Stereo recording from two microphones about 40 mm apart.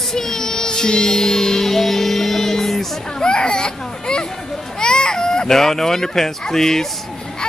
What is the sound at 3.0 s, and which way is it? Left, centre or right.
Children playing, centre.